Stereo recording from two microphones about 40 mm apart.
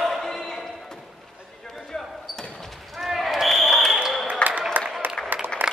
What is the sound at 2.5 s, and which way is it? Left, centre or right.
Basketball bounce, centre.